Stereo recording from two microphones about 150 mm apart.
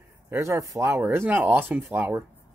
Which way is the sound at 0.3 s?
20° right (ahead or behind).